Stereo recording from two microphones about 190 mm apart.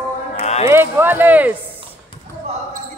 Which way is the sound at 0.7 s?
10° right (ahead or behind).